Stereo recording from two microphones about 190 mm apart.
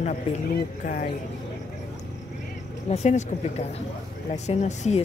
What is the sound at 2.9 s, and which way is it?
Speech, 35° left (ahead or behind).